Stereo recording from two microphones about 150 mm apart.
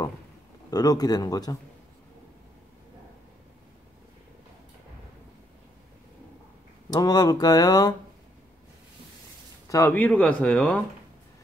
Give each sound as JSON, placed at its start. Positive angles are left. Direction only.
{"t": 0.7, "sound": "speech", "side_deg": 25}
{"t": 6.9, "sound": "speech", "side_deg": 25}
{"t": 9.7, "sound": "speech", "side_deg": 15}